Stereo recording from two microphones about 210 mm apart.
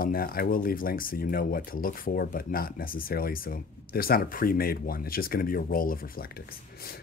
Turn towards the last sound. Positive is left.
turn(degrees=45)  # may be behind; listen again after turning